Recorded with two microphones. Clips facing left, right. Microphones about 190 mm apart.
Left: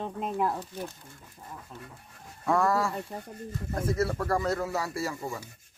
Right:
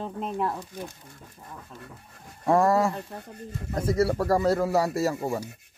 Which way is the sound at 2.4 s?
25° right (ahead or behind).